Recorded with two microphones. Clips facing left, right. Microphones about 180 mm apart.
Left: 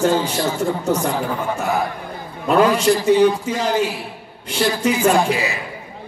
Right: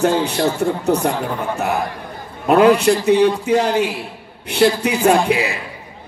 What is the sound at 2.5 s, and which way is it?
A man's voice, 65° right (ahead or behind).